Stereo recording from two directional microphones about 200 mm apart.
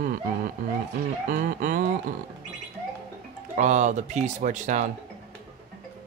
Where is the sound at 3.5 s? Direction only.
35° right (ahead or behind).